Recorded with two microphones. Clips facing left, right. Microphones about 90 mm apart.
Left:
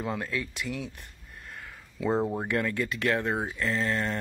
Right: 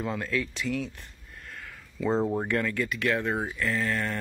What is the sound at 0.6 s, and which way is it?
Speech, 10° left (ahead or behind).